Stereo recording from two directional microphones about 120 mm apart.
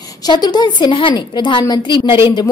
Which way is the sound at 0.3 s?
40° left (ahead or behind).